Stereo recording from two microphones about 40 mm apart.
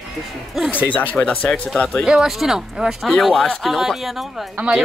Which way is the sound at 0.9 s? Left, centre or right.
Left.